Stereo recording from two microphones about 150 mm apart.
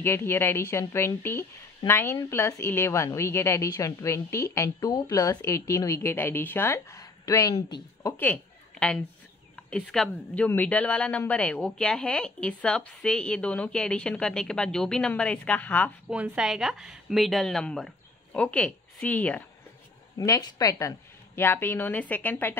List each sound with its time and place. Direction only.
0.0 s a woman's voice: 15° left (ahead or behind)
8.0 s a woman's voice: 10° left (ahead or behind)
16.1 s a woman's voice: 5° right (ahead or behind); by 19.4 s 10° left (ahead or behind)
20.2 s a woman's voice: 25° left (ahead or behind)